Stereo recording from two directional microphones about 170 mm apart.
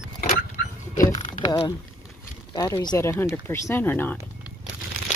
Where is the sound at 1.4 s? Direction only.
25° left (ahead or behind).